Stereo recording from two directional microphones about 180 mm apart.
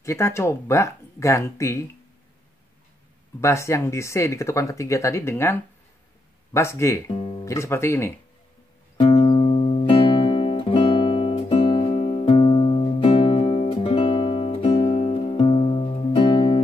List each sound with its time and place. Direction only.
0.0 s speech: 15° left (ahead or behind)
3.3 s speech: 15° left (ahead or behind)
7.1 s music: 30° left (ahead or behind)
7.5 s speech: 15° left (ahead or behind)
9.0 s music: 35° left (ahead or behind)